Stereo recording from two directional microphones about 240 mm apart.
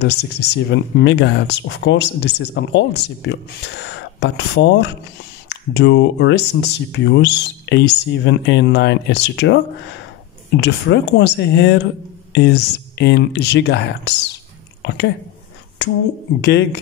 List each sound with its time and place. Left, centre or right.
0.0 s speech: left
10.6 s a woman's voice: left